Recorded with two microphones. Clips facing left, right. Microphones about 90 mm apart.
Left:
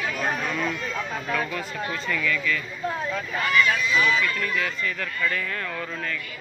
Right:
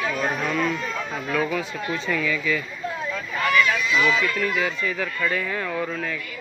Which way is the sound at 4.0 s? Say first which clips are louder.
Right 3 dB; 15° right (ahead or behind).